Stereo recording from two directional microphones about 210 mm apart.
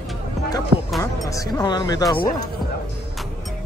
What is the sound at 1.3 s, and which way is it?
Speech, 15° left (ahead or behind).